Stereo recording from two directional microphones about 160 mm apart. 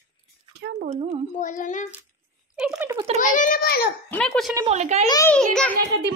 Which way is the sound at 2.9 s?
40° right (ahead or behind).